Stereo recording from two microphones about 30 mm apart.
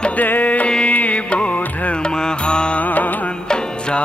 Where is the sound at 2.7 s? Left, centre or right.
Left.